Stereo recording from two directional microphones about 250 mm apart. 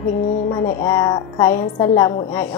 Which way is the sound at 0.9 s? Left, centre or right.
Centre.